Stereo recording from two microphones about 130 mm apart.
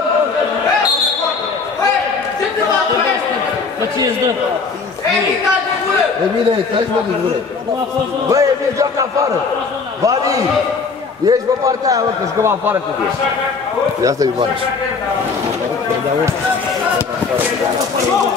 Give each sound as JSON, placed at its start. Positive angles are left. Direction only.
{"t": 8.3, "sound": "a man's voice", "side_deg": -25}
{"t": 10.0, "sound": "a man's voice", "side_deg": -25}